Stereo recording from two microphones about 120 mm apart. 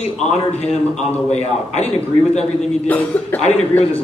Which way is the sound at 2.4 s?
10° left (ahead or behind).